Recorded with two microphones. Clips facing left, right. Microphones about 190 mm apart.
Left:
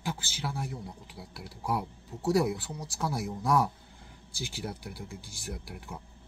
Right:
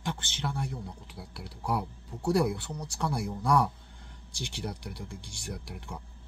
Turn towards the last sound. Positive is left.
turn(degrees=5)  # may be behind; listen again after turning